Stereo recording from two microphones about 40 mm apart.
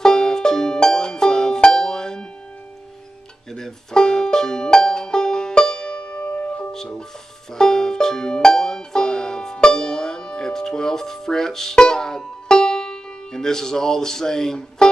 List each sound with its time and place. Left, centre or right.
0.0 s music: centre
3.5 s music: centre; by 6.7 s left
6.7 s speech: centre
7.5 s banjo: centre
9.6 s music: left
11.7 s banjo: centre